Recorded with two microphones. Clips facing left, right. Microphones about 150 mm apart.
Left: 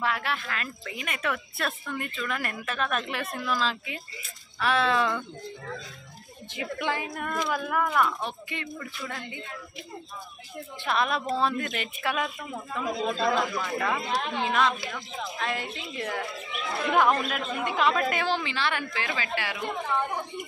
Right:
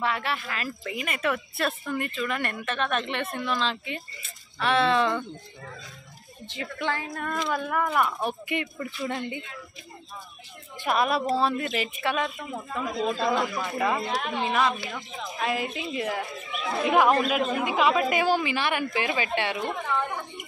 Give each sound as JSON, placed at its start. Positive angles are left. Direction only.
{"t": 0.0, "sound": "speech", "side_deg": 0}
{"t": 6.5, "sound": "a woman's voice", "side_deg": 15}
{"t": 7.5, "sound": "speech", "side_deg": 0}
{"t": 7.9, "sound": "a woman's voice", "side_deg": -10}
{"t": 10.9, "sound": "a woman's voice", "side_deg": -5}